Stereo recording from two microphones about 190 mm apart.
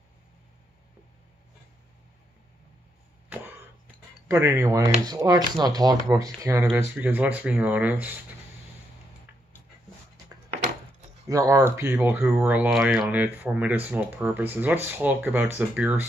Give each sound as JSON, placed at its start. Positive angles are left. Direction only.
{"t": 4.3, "sound": "speech", "side_deg": -15}
{"t": 11.2, "sound": "speech", "side_deg": -15}